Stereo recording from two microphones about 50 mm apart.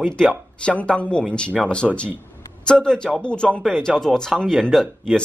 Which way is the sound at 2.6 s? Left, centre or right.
Centre.